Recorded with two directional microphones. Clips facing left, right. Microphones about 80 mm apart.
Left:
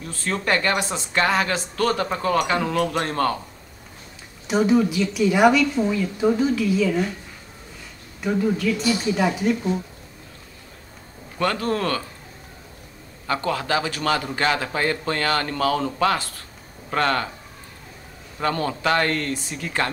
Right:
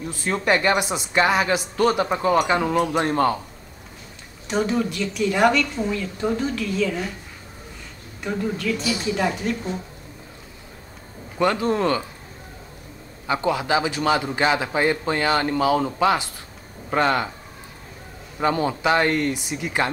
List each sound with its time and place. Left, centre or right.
0.0 s speech: centre
4.5 s a woman's voice: centre
8.2 s a woman's voice: centre
11.3 s speech: centre
13.3 s speech: centre
18.4 s speech: centre